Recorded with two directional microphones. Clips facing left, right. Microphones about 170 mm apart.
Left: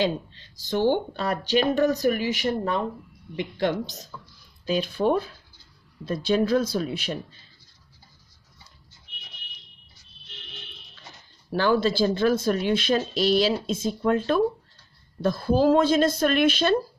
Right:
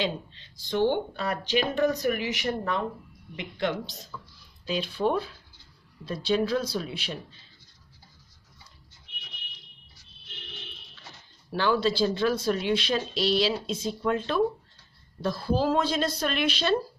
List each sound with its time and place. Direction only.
0.0 s speech: 40° left (ahead or behind)
3.3 s speech: 40° left (ahead or behind)
11.5 s speech: 45° left (ahead or behind)